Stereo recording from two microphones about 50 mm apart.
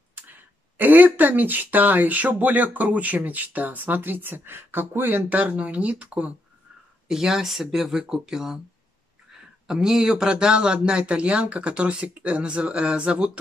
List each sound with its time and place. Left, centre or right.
0.1 s speech: right
7.1 s speech: centre
9.7 s speech: centre